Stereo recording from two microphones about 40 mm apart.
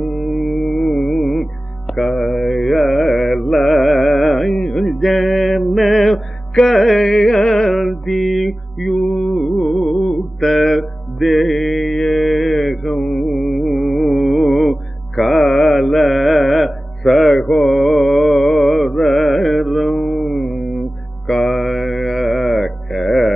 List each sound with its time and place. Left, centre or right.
0.0 s mantra: centre
0.6 s music: centre
2.0 s carnatic music: centre
4.6 s music: centre
4.8 s music: centre
12.9 s mantra: centre
13.3 s music: centre
17.4 s mantra: centre
17.6 s mantra: centre
19.1 s carnatic music: centre
21.3 s mantra: centre
21.6 s carnatic music: centre